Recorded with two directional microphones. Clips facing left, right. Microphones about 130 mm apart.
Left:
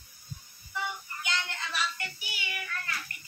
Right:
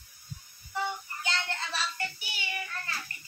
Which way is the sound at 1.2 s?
30° right (ahead or behind).